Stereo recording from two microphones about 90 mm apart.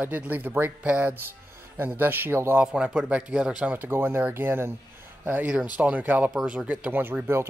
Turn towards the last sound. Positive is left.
turn(degrees=-25)  # may be behind; listen again after turning